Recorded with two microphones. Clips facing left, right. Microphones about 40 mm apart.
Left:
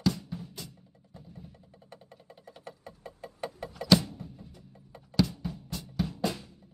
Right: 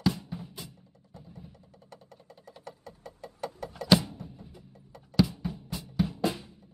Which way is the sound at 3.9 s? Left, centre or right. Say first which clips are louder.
Even; centre.